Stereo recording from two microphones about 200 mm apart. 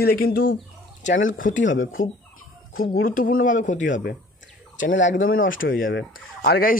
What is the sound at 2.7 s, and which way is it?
Speech, 45° left (ahead or behind).